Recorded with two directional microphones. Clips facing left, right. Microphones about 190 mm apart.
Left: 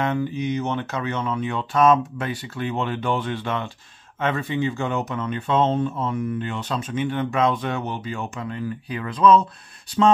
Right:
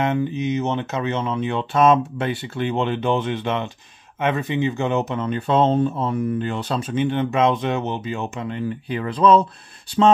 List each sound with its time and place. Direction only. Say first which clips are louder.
0.0 s speech: right 2 dB; 20° right (ahead or behind)